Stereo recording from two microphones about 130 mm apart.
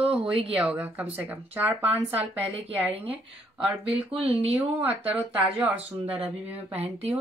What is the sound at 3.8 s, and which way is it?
Speech, 45° right (ahead or behind).